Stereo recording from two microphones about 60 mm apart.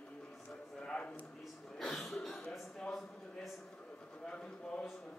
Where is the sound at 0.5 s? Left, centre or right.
Centre.